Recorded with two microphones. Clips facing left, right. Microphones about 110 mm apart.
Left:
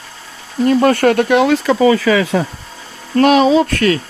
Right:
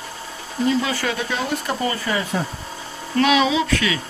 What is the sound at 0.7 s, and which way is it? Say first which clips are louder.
Speech: left 11 dB; 55° left (ahead or behind).